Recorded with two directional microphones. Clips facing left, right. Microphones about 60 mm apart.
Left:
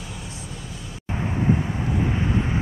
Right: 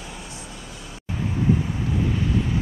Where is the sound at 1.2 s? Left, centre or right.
Left.